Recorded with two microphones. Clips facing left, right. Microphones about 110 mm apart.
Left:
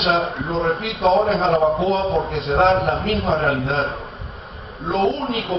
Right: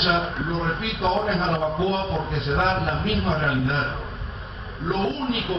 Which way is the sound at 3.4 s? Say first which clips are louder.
Left 4 dB; 60° left (ahead or behind).